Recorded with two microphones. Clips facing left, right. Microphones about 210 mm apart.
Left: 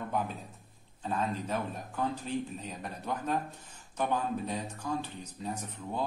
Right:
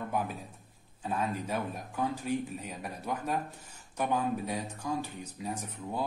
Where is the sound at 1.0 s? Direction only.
10° right (ahead or behind).